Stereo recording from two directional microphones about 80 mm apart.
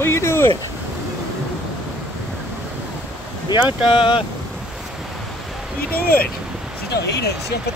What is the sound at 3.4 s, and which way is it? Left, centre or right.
Speech, left.